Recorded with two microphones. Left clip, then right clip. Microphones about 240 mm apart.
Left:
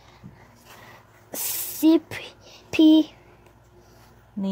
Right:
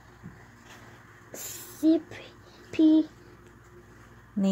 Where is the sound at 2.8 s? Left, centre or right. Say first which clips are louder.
Left 5 dB; left.